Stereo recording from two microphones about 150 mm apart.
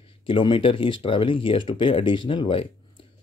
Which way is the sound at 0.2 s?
35° left (ahead or behind).